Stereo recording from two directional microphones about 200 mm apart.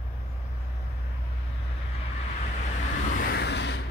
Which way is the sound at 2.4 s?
35° left (ahead or behind).